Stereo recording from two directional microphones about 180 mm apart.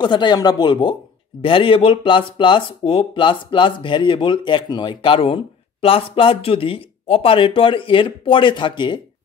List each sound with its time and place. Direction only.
0.0 s speech: 25° left (ahead or behind)